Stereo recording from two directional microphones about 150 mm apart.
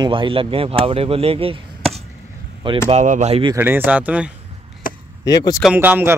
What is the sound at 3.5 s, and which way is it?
Speech, 15° right (ahead or behind).